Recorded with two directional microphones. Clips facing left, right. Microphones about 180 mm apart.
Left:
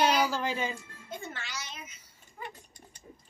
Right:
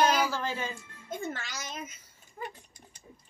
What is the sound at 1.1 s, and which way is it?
Music, 45° right (ahead or behind).